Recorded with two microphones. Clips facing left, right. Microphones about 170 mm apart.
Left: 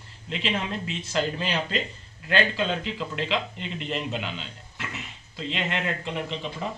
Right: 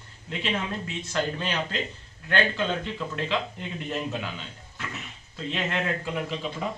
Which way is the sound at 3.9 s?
Centre (ahead or behind).